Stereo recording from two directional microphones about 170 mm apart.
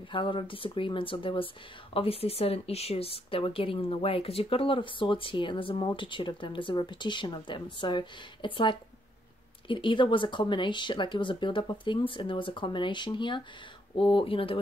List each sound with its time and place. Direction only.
0.1 s speech: 30° left (ahead or behind)